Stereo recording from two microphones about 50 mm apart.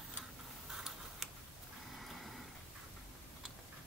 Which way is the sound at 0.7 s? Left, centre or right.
Centre.